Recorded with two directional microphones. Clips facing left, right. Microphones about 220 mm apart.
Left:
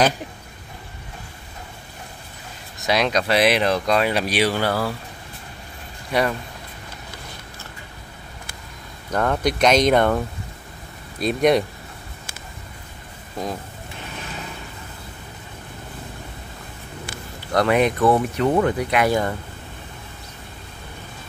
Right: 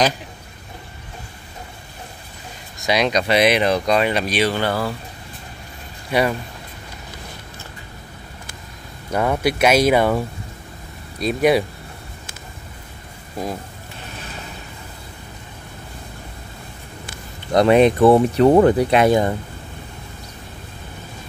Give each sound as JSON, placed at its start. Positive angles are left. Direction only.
{"t": 2.8, "sound": "speech", "side_deg": 0}
{"t": 6.1, "sound": "speech", "side_deg": 0}
{"t": 9.1, "sound": "speech", "side_deg": -10}
{"t": 17.5, "sound": "speech", "side_deg": -25}